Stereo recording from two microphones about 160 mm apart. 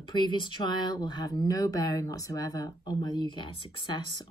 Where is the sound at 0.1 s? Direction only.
30° left (ahead or behind).